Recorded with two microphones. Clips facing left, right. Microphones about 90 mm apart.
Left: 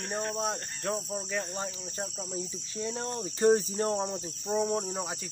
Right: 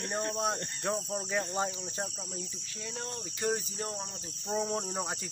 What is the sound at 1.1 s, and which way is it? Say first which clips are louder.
Cricket: right 2 dB; 15° right (ahead or behind).